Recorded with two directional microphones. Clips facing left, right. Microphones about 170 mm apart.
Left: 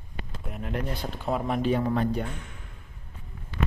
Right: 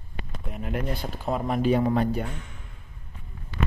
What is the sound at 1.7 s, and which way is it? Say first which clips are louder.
Speech: right 3 dB; 15° right (ahead or behind).